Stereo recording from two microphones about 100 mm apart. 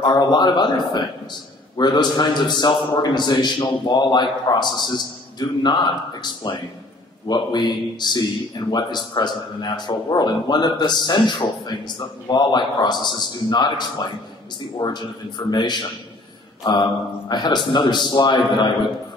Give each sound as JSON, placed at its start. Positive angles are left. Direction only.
{"t": 0.0, "sound": "speech", "side_deg": 45}